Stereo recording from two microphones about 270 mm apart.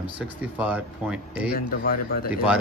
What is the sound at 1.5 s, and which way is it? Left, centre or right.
Speech, left.